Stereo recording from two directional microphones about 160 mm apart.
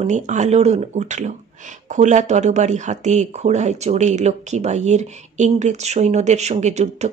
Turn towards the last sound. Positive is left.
turn(degrees=-45)  # may be behind; listen again after turning